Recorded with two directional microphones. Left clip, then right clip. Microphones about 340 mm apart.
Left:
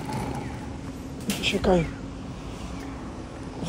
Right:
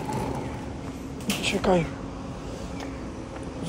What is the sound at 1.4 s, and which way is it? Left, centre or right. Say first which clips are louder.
Speech: left 1 dB; centre.